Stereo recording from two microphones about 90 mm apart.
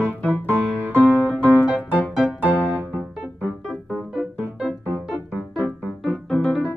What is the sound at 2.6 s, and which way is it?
Music, 15° right (ahead or behind).